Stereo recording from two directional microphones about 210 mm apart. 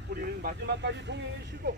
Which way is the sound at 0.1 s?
50° right (ahead or behind).